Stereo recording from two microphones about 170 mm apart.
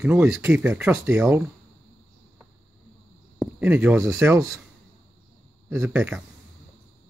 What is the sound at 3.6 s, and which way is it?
Speech, 10° right (ahead or behind).